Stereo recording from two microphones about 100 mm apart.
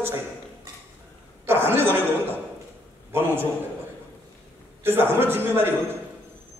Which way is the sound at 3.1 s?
20° right (ahead or behind).